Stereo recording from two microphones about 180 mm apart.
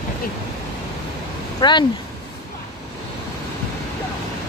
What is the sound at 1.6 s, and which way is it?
Speech, 25° left (ahead or behind).